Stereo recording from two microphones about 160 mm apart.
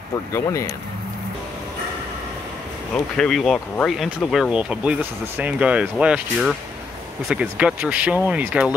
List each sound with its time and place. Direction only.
0.3 s speech: 20° left (ahead or behind)
2.9 s speech: 5° left (ahead or behind)